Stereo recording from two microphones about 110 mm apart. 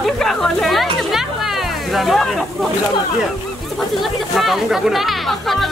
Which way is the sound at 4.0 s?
Centre (ahead or behind).